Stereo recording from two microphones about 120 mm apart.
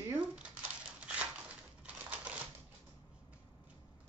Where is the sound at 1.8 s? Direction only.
10° right (ahead or behind).